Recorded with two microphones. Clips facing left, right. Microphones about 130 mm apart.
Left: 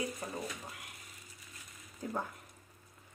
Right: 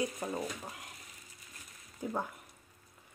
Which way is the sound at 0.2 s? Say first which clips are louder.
Right 4 dB; 20° right (ahead or behind).